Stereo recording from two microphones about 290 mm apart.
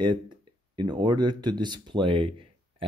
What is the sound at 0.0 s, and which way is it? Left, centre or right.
Speech, centre.